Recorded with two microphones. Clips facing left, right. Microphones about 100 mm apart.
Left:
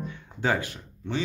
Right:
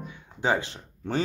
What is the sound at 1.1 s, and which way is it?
Speech, 40° right (ahead or behind).